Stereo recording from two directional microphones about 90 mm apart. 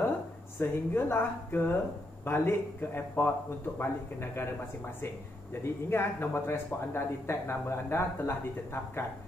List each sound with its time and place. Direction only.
0.6 s speech: 25° left (ahead or behind)